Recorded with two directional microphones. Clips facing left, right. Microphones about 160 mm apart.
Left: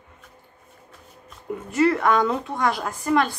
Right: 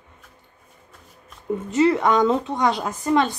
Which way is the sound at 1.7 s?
20° right (ahead or behind).